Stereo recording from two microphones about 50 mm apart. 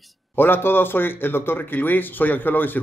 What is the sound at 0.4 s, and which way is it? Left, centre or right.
Speech, left.